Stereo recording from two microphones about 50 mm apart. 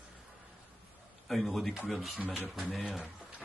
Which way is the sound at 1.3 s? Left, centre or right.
Centre.